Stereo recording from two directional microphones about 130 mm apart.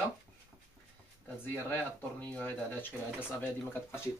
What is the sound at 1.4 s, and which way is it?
Speech, 15° left (ahead or behind).